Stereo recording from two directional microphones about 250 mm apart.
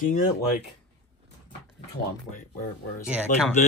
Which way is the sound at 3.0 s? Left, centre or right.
Centre.